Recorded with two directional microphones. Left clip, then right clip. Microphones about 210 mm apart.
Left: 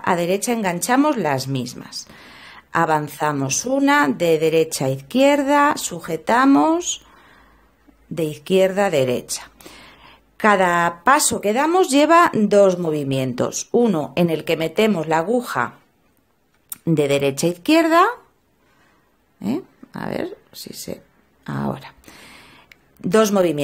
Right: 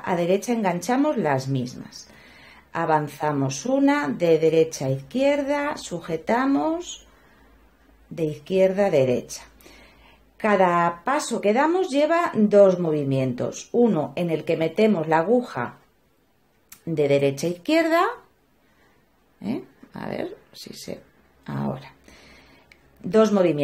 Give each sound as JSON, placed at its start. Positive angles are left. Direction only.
{"t": 0.0, "sound": "speech", "side_deg": 30}
{"t": 8.1, "sound": "speech", "side_deg": 35}
{"t": 16.8, "sound": "speech", "side_deg": 35}
{"t": 19.4, "sound": "speech", "side_deg": 25}
{"t": 22.7, "sound": "a sound", "side_deg": 35}